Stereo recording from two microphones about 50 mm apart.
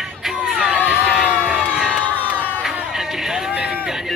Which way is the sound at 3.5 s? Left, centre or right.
Centre.